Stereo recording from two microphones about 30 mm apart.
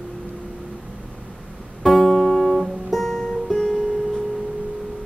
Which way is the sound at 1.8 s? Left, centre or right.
Centre.